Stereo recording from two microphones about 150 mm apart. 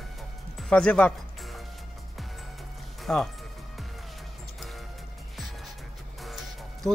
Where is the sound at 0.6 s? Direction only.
5° left (ahead or behind).